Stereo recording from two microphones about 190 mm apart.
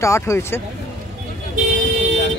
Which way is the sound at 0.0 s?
15° left (ahead or behind).